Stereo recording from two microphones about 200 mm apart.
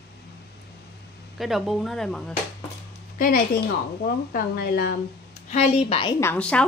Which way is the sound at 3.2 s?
50° left (ahead or behind).